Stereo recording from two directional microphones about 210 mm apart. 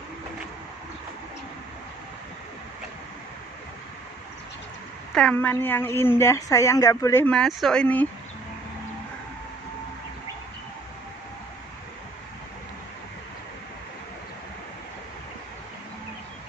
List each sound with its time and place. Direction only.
5.1 s speech: 5° left (ahead or behind)